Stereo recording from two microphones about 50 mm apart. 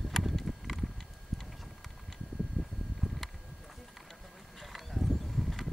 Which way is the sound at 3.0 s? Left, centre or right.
Centre.